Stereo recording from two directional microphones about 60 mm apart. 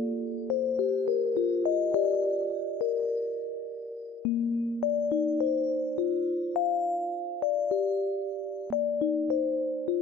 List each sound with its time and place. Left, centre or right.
1.9 s music: left
6.5 s music: centre